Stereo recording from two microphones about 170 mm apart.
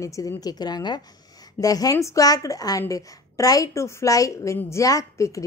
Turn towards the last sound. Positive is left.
turn(degrees=20)  # may be behind; listen again after turning